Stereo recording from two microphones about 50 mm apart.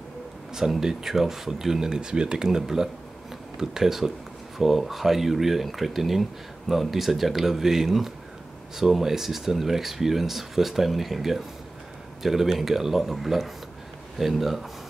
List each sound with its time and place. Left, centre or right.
0.6 s speech: centre